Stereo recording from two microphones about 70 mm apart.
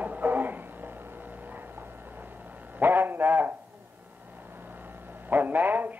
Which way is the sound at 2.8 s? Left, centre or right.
Right.